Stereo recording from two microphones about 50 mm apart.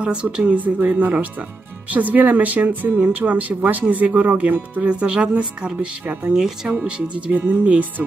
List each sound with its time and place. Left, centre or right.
0.0 s speech: right
4.8 s speech: right
7.3 s speech: right